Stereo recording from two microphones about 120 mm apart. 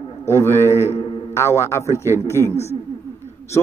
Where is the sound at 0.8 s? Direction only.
55° left (ahead or behind).